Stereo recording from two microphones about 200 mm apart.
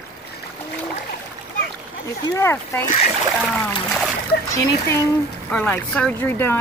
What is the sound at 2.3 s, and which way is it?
Speech, 15° left (ahead or behind).